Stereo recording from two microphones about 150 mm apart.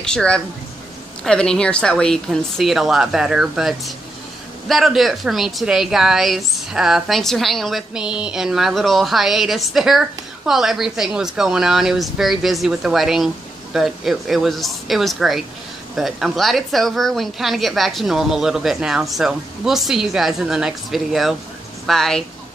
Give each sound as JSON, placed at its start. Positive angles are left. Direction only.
{"t": 0.0, "sound": "a woman's voice", "side_deg": 5}